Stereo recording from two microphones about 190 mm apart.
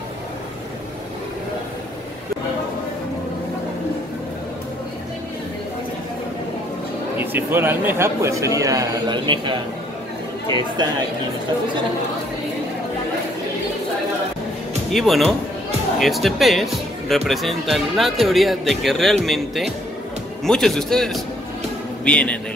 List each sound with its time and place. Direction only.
7.2 s speech: 10° right (ahead or behind)
14.9 s a man's voice: centre (ahead or behind)